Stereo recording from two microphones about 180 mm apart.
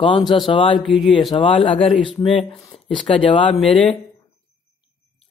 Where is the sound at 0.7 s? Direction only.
Centre (ahead or behind).